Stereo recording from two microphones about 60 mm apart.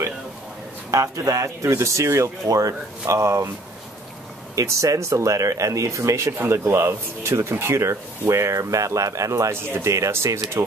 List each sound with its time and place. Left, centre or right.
0.9 s a man's voice: right
1.7 s speech: right
4.6 s speech: right
6.5 s speech: right
9.5 s speech: right